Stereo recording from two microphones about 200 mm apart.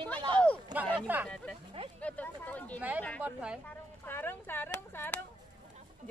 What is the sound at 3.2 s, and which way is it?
Speech, 5° right (ahead or behind).